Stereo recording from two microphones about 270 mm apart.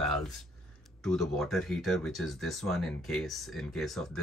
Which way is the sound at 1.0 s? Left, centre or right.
Centre.